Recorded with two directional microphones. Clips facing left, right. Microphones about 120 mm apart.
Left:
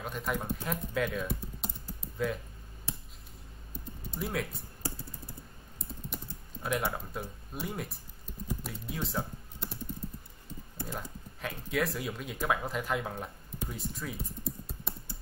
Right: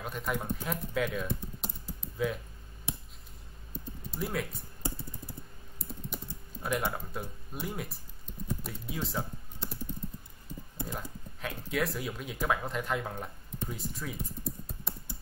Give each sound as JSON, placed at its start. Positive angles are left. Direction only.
{"t": 0.0, "sound": "speech", "side_deg": 0}
{"t": 4.1, "sound": "speech", "side_deg": 0}
{"t": 6.0, "sound": "typing", "side_deg": 0}
{"t": 6.9, "sound": "speech", "side_deg": 0}
{"t": 10.8, "sound": "speech", "side_deg": -15}
{"t": 11.4, "sound": "speech", "side_deg": 0}